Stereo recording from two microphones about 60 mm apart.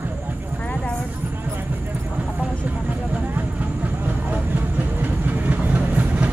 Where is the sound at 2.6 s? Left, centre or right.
Right.